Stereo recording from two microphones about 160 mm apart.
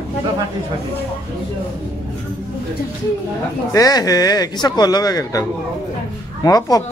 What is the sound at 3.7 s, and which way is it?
Speech, 20° left (ahead or behind).